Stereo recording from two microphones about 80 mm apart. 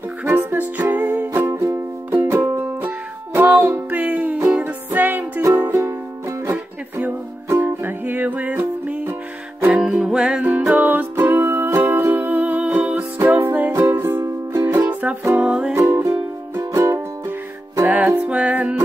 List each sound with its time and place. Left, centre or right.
0.2 s music: right
9.7 s music: centre
10.7 s music: right
13.4 s music: right
14.9 s music: right
15.7 s music: right
17.8 s music: centre